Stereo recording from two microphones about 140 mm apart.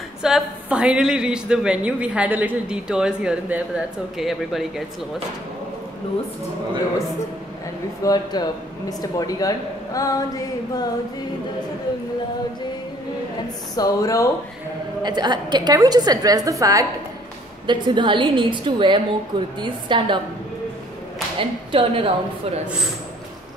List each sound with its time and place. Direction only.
0.2 s a woman's voice: 5° right (ahead or behind)
8.0 s speech: 30° left (ahead or behind)
13.7 s speech: 25° left (ahead or behind)
15.0 s a woman's voice: 30° right (ahead or behind)
17.6 s a woman's voice: 35° right (ahead or behind)
21.4 s a woman's voice: 40° right (ahead or behind)